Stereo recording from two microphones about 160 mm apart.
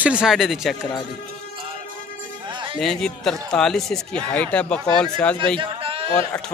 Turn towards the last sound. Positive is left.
turn(degrees=-35)  # may be behind; listen again after turning